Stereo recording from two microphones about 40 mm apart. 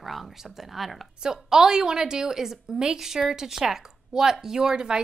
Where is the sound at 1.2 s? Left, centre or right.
Centre.